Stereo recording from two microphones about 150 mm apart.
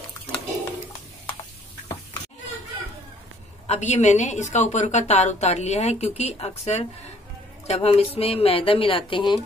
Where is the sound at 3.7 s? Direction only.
50° left (ahead or behind).